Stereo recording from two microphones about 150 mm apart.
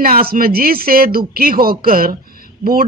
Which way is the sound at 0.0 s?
80° right.